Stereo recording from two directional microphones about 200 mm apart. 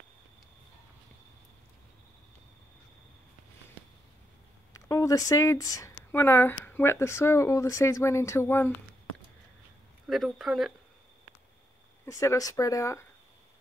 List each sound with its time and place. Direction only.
4.7 s speech: 15° left (ahead or behind)
10.0 s speech: centre (ahead or behind)
12.1 s speech: 15° left (ahead or behind)